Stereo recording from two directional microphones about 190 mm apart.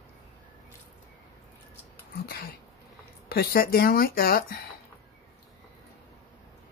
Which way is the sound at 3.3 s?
55° left (ahead or behind).